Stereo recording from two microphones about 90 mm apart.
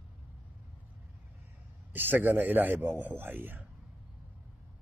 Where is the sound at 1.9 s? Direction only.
20° right (ahead or behind).